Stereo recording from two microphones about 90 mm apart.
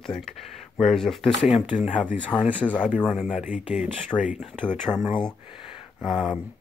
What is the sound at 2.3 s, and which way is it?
Speech, 15° left (ahead or behind).